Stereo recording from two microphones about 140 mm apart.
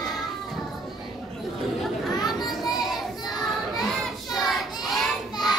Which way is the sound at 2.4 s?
Centre (ahead or behind).